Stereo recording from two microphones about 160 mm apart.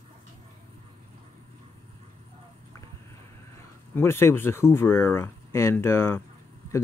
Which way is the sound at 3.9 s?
15° left (ahead or behind).